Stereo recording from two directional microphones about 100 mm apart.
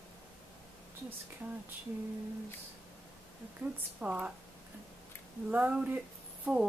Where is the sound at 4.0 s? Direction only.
10° right (ahead or behind).